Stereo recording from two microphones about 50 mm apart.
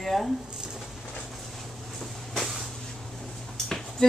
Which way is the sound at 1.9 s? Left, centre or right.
Centre.